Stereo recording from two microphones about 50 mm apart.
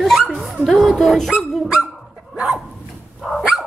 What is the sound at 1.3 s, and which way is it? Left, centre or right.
Dog, centre.